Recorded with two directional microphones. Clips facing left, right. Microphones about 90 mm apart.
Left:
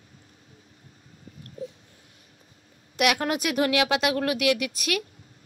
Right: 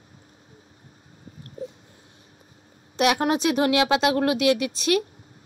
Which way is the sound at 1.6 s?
30° right (ahead or behind).